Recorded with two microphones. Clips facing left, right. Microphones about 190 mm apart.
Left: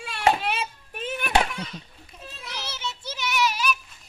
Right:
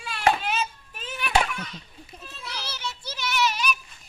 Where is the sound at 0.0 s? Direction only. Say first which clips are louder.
Left 1 dB; 30° left (ahead or behind).